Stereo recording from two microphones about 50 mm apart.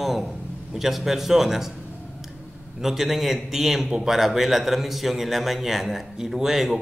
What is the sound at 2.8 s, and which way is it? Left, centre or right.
Speech, centre.